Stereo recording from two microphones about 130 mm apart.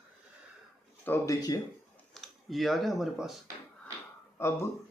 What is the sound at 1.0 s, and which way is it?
Speech, 25° left (ahead or behind).